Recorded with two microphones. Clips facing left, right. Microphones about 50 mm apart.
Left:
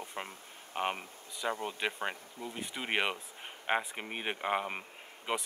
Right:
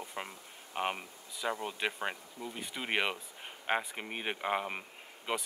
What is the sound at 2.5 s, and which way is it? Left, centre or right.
Speech, centre.